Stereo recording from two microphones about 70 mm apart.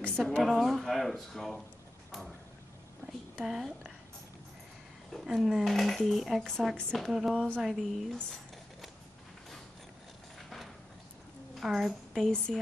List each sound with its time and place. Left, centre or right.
0.0 s speech: centre
3.4 s speech: centre
5.1 s speech: centre
11.6 s a woman's voice: centre
12.2 s speech: centre